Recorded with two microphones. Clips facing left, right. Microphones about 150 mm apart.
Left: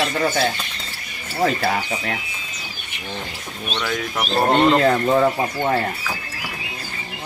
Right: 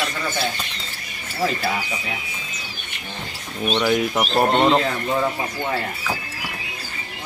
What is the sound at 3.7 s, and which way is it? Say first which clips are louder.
Speech: right 5 dB; 20° right (ahead or behind).